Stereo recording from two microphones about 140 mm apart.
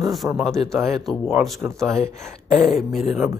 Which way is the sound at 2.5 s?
Centre (ahead or behind).